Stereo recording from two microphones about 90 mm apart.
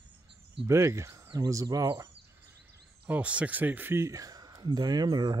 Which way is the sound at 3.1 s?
15° right (ahead or behind).